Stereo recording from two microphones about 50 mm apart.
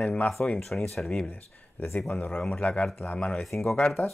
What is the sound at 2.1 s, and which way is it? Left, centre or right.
Speech, left.